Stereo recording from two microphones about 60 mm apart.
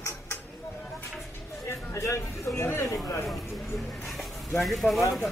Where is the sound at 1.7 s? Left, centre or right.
Left.